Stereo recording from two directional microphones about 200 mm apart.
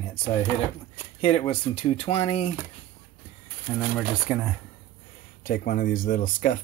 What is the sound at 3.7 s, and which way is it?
Speech, 5° right (ahead or behind).